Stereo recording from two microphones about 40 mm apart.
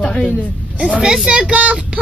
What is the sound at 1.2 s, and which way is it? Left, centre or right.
Speech, right.